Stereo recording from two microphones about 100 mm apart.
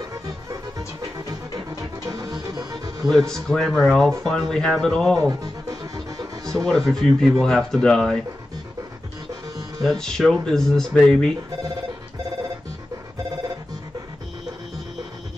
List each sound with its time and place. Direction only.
0.0 s music: 35° right (ahead or behind)
2.3 s music: 45° right (ahead or behind)
3.0 s speech: centre (ahead or behind)
5.4 s music: 40° right (ahead or behind)
6.5 s speech: 5° left (ahead or behind)
9.8 s speech: 5° left (ahead or behind)